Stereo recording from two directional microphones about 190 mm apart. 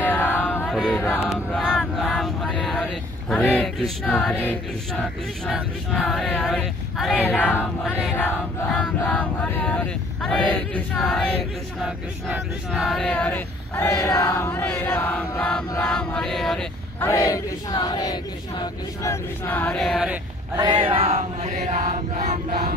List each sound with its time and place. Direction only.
0.0 s chant: 10° left (ahead or behind)
0.7 s speech: centre (ahead or behind)
5.5 s speech: centre (ahead or behind)
7.2 s a sound: 10° left (ahead or behind)
8.7 s speech: 5° left (ahead or behind)
11.8 s a sound: 5° right (ahead or behind)
15.7 s speech: 5° left (ahead or behind)
17.0 s a sound: 15° left (ahead or behind)
19.4 s speech: 10° left (ahead or behind)
20.5 s chant: 25° right (ahead or behind); by 22.8 s 45° right (ahead or behind)